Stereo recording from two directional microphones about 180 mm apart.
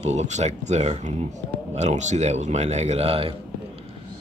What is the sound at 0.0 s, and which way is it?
Speech, 40° right (ahead or behind).